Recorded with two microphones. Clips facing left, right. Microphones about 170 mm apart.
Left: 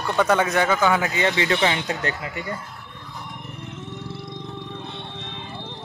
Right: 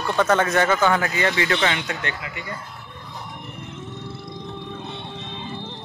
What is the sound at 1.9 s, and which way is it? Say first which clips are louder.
Speech: left 3 dB; 40° left (ahead or behind).